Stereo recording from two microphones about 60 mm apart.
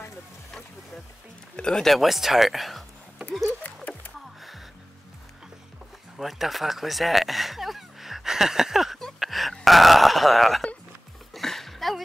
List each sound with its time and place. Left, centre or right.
1.6 s speech: centre
3.6 s music: left
6.1 s a sound: centre